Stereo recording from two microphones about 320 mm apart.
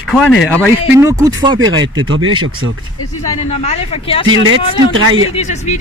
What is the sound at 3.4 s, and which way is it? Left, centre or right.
Speech, centre.